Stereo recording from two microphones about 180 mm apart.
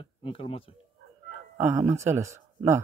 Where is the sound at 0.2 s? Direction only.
30° left (ahead or behind).